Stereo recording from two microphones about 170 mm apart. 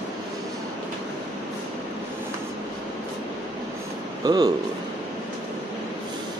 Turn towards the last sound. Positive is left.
turn(degrees=-25)  # may be behind; listen again after turning